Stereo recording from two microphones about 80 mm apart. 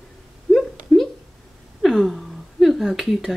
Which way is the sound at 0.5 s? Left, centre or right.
Centre.